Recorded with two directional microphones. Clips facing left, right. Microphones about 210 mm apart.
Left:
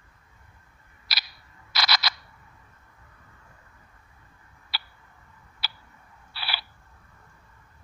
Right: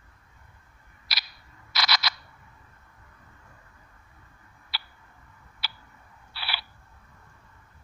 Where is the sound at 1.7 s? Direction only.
30° left (ahead or behind).